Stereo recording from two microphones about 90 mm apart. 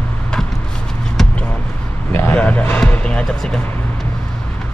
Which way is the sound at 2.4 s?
15° left (ahead or behind).